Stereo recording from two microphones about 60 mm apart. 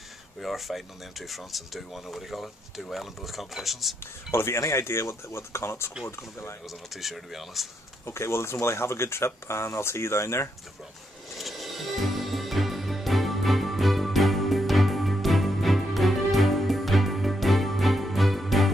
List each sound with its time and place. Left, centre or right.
0.4 s speech: centre
4.3 s speech: left
6.9 s speech: centre
8.0 s speech: left
11.3 s music: centre